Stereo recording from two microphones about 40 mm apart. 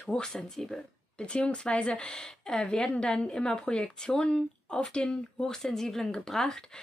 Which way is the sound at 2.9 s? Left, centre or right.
Left.